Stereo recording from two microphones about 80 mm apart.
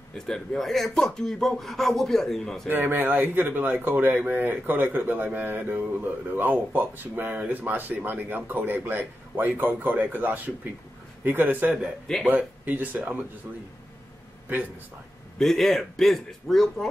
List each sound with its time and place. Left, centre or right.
0.1 s speech: centre
2.7 s a man's voice: right
15.3 s speech: centre